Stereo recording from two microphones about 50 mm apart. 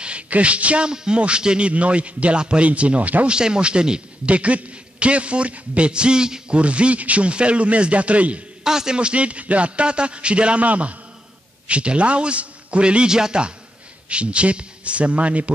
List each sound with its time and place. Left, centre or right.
0.0 s a man's voice: right
3.3 s a man's voice: centre
8.6 s a man's voice: centre